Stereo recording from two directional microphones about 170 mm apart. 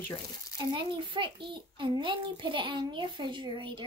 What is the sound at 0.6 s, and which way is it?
A woman's voice, 30° right (ahead or behind).